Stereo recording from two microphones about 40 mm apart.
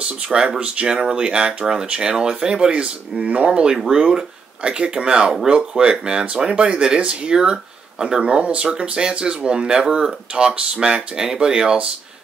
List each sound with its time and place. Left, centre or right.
0.0 s speech: right
3.7 s speech: centre